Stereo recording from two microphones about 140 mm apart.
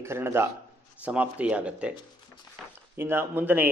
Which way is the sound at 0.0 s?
15° right (ahead or behind).